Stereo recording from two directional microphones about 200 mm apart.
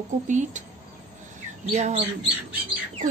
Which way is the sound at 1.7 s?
35° right (ahead or behind).